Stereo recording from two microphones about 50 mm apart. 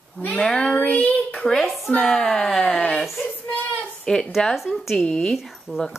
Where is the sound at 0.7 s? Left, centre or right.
Left.